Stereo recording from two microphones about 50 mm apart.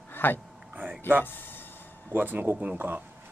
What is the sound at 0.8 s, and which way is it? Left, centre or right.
Speech, right.